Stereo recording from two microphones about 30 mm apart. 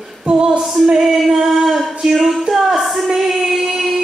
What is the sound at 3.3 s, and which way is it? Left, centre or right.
Child singing, centre.